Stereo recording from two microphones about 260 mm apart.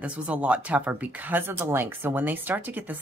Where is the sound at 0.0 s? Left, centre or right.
Centre.